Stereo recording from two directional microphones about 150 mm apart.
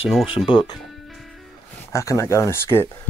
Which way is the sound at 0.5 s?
30° left (ahead or behind).